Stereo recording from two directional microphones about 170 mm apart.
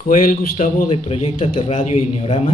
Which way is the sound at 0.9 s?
40° left (ahead or behind).